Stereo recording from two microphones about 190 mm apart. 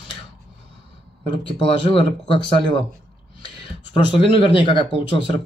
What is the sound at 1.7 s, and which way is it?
Speech, 25° left (ahead or behind).